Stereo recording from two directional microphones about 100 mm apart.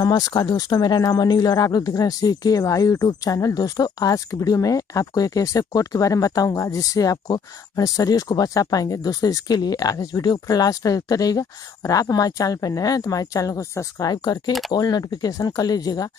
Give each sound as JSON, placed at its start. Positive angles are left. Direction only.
{"t": 0.0, "sound": "speech", "side_deg": 40}